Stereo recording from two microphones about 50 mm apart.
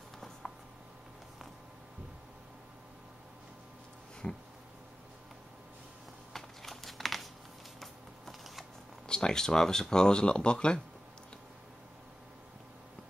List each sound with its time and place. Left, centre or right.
4.2 s speech: centre
6.3 s crumpling: centre
7.8 s shuffling cards: centre
9.0 s speech: centre